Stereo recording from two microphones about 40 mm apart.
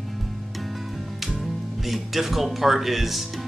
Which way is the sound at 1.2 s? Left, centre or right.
Centre.